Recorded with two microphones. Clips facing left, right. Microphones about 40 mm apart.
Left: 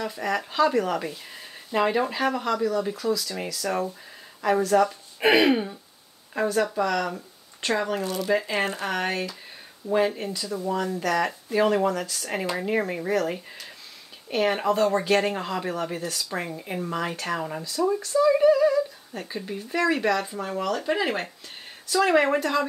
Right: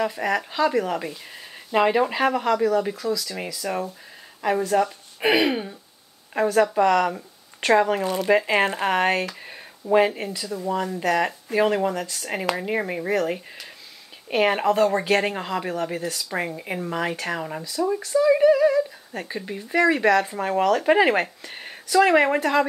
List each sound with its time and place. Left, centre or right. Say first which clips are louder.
0.0 s speech: right 4 dB; centre
0.4 s speech: left 3 dB; centre
3.0 s speech: even; centre
3.4 s speech: left 1 dB; centre
5.2 s a sound: left 1 dB; centre
6.3 s speech: right 4 dB; centre
6.7 s speech: right 6 dB; right; by 13.4 s centre
14.3 s speech: right 3 dB; right
14.7 s speech: right 2 dB; centre
20.0 s speech: right 5 dB; right
20.3 s speech: right 7 dB; right
21.9 s speech: right 3 dB; centre